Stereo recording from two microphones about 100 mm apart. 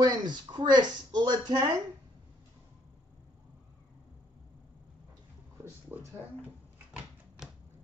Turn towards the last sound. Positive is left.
turn(degrees=-10)  # may be behind; listen again after turning